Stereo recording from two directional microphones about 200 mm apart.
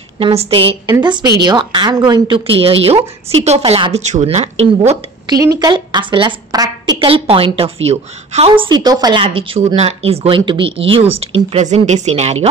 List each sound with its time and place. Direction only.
0.2 s a woman's voice: 30° right (ahead or behind)
5.4 s a woman's voice: 20° right (ahead or behind)